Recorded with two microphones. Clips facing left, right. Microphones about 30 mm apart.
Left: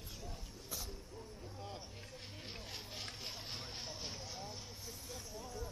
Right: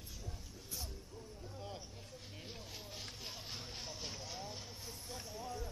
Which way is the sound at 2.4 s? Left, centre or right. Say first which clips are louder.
Left 2 dB; left.